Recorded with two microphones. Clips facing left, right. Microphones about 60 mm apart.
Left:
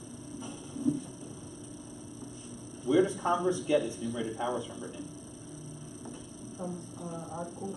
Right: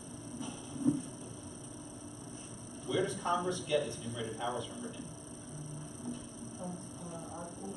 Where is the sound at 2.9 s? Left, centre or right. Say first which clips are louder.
Left 6 dB; centre.